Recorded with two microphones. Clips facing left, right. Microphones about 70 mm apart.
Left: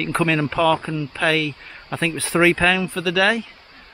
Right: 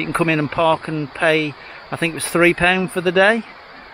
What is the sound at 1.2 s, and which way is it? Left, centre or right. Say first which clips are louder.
A man's voice: right 4 dB; centre.